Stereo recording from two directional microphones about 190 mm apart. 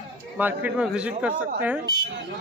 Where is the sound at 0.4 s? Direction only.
10° right (ahead or behind).